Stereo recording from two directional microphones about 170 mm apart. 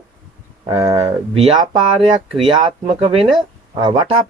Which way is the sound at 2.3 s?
30° right (ahead or behind).